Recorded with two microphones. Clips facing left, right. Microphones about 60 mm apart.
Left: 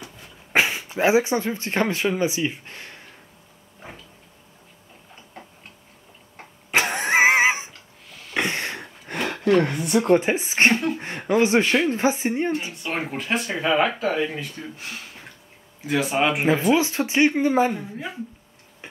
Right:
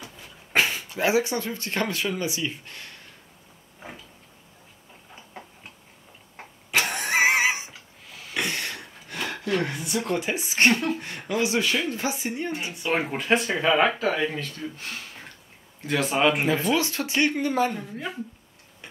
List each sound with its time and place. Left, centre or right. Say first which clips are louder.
0.5 s speech: left 3 dB; left
5.4 s tick-tock: even; centre
6.7 s vehicle: left 4 dB; left
8.4 s a sound: left 4 dB; left
9.0 s a sound: left 8 dB; left
10.0 s speech: left 8 dB; left
12.8 s speech: right 2 dB; centre
16.7 s speech: left 4 dB; left